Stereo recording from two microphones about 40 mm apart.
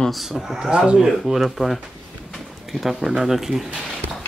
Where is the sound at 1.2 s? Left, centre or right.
Centre.